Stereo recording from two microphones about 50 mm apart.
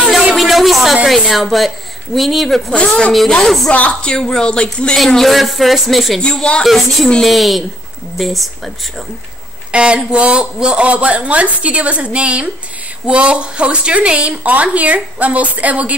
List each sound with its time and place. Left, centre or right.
0.4 s a sound: centre
1.0 s speech: centre
2.7 s speech: left
3.4 s a woman's voice: centre
4.9 s speech: centre
6.2 s a woman's voice: centre
6.6 s speech: centre
9.7 s a woman's voice: right